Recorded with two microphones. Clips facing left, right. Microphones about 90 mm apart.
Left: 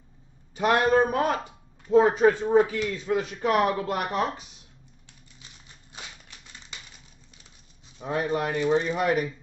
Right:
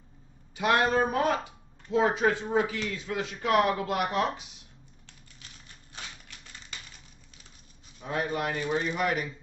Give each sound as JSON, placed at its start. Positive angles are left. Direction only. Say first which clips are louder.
{"t": 0.6, "sound": "a man's voice", "louder": "left 3 dB", "side_deg": 40}
{"t": 5.9, "sound": "typewriter", "louder": "even", "side_deg": 15}
{"t": 8.0, "sound": "a man's voice", "louder": "left 3 dB", "side_deg": 30}